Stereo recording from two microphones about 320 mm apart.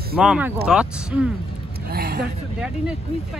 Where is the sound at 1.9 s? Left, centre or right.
Right.